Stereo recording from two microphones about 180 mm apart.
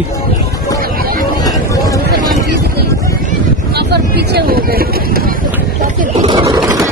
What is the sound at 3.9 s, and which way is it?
Speech, 60° right (ahead or behind).